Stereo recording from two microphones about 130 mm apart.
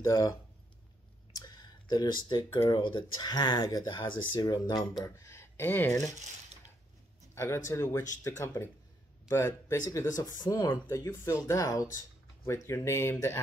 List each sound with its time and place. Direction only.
0.0 s speech: 30° left (ahead or behind)
1.4 s clicking: 30° left (ahead or behind)
2.7 s speech: 35° left (ahead or behind); by 6.0 s 20° left (ahead or behind)
7.3 s speech: 20° left (ahead or behind)